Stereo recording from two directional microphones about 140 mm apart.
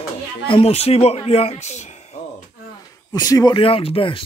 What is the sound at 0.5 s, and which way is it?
A man's voice, 45° left (ahead or behind).